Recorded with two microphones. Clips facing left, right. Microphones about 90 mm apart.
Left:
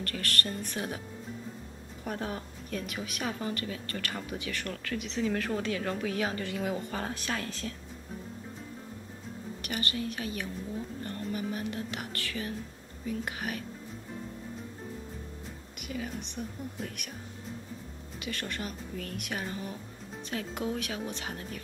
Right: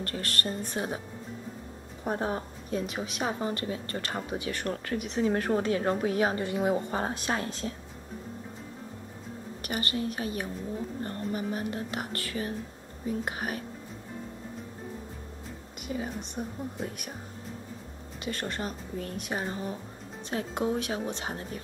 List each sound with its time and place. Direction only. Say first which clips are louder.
0.0 s a woman's voice: right 1 dB; 25° right (ahead or behind)
2.0 s a woman's voice: right 5 dB; 30° right (ahead or behind)
9.7 s speech: right 3 dB; 30° right (ahead or behind)
15.9 s a woman's voice: right 3 dB; 25° right (ahead or behind)
18.2 s speech: right 3 dB; 30° right (ahead or behind)